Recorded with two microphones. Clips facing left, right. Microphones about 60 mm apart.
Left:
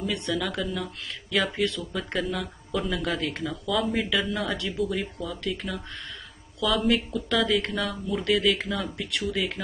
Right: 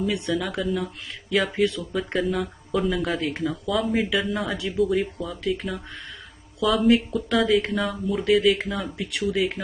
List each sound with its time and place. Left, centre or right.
0.0 s speech: centre